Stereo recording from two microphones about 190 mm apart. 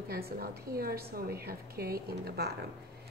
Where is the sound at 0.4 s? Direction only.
50° right (ahead or behind).